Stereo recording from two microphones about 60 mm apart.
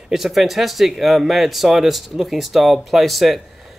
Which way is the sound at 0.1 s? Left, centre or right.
Centre.